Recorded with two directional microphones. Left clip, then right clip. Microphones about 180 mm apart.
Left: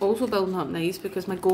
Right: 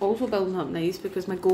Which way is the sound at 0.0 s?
15° left (ahead or behind).